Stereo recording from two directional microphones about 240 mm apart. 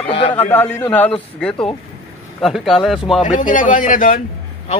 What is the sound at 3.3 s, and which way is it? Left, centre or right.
Speech, left.